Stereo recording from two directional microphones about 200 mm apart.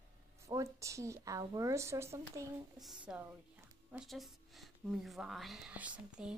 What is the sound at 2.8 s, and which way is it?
A woman's voice, 5° right (ahead or behind).